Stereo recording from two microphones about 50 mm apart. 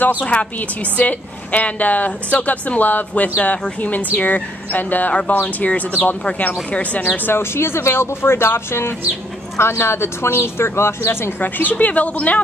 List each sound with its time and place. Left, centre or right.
0.2 s a woman's voice: left
7.2 s speech: left
11.4 s a woman's voice: left